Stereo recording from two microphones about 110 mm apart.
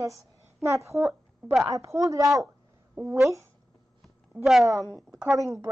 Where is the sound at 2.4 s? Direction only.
15° right (ahead or behind).